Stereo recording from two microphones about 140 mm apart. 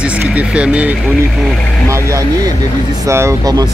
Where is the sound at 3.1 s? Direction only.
20° right (ahead or behind).